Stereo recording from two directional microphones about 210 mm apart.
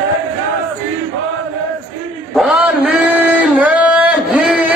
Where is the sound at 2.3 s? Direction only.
5° right (ahead or behind).